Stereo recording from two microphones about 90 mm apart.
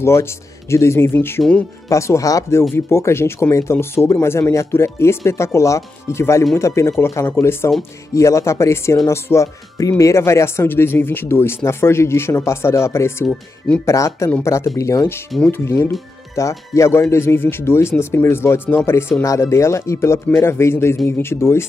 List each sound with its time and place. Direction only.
0.0 s speech: 30° left (ahead or behind)